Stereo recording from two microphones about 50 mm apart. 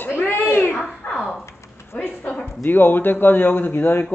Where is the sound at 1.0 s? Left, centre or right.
Left.